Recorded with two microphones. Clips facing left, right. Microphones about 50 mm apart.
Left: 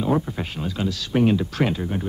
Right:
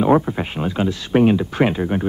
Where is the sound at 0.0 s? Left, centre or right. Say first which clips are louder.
Right 7 dB; right.